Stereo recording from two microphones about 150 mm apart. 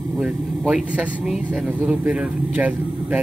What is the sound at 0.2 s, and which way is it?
Speech, 5° right (ahead or behind).